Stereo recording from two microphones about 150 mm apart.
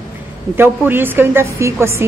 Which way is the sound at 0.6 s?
15° right (ahead or behind).